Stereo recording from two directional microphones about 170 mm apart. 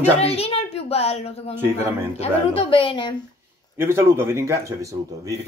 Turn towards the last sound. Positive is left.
turn(degrees=-20)  # may be behind; listen again after turning